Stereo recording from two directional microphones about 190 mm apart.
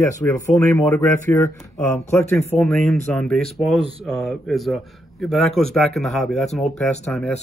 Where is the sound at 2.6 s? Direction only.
Centre (ahead or behind).